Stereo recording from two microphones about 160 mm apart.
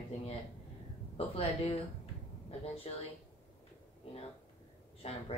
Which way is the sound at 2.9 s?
40° left (ahead or behind).